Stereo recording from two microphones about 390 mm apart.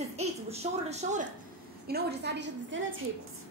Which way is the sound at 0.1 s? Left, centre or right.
Centre.